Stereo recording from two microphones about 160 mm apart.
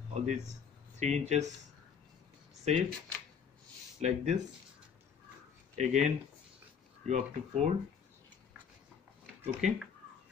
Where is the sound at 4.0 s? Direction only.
45° right (ahead or behind).